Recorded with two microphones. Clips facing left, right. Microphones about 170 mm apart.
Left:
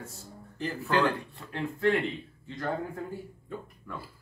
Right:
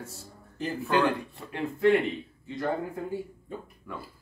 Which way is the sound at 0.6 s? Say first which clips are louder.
Right 1 dB; 15° right (ahead or behind).